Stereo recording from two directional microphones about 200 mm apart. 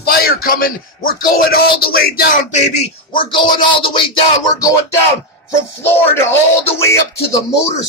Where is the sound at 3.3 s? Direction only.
25° left (ahead or behind).